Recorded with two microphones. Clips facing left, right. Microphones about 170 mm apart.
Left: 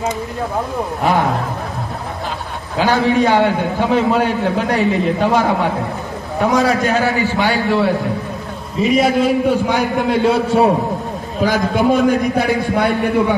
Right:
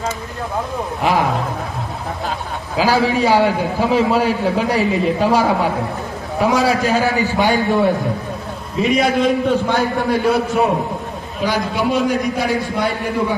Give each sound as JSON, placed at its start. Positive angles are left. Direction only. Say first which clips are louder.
{"t": 2.8, "sound": "a man's voice", "louder": "left 1 dB", "side_deg": -10}
{"t": 6.5, "sound": "a man's voice", "louder": "left 2 dB", "side_deg": -30}
{"t": 6.9, "sound": "a man's voice", "louder": "even", "side_deg": -15}
{"t": 8.7, "sound": "a man's voice", "louder": "left 2 dB", "side_deg": 0}
{"t": 11.4, "sound": "a man's voice", "louder": "left 4 dB", "side_deg": 45}